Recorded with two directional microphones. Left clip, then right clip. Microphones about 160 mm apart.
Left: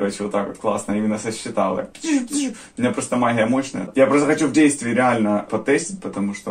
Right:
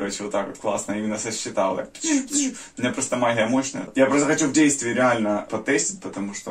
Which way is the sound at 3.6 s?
25° left (ahead or behind).